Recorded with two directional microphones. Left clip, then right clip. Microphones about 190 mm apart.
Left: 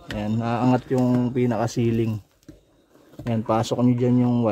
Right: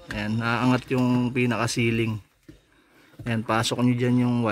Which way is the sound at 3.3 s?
10° left (ahead or behind).